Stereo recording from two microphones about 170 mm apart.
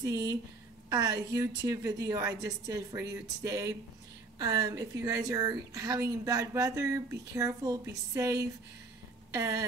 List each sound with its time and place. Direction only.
0.0 s speech: 20° right (ahead or behind)